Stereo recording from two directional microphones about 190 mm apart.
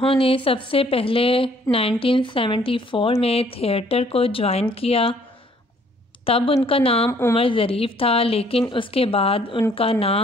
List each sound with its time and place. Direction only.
0.0 s speech: 30° left (ahead or behind)
6.2 s speech: 30° left (ahead or behind)
7.1 s a woman's voice: 15° left (ahead or behind)
7.3 s speech: 30° left (ahead or behind)